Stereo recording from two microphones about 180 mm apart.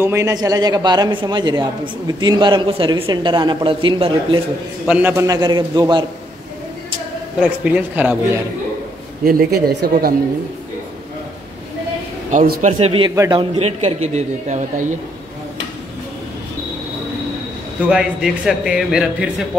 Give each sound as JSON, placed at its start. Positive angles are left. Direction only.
{"t": 0.0, "sound": "speech", "side_deg": -15}
{"t": 4.8, "sound": "speech", "side_deg": -10}
{"t": 7.3, "sound": "a man's voice", "side_deg": -10}
{"t": 9.2, "sound": "speech", "side_deg": -55}
{"t": 12.3, "sound": "a man's voice", "side_deg": -45}
{"t": 12.7, "sound": "speech", "side_deg": -30}
{"t": 13.1, "sound": "a man's voice", "side_deg": -15}
{"t": 13.4, "sound": "a man's voice", "side_deg": -35}
{"t": 17.8, "sound": "speech", "side_deg": -5}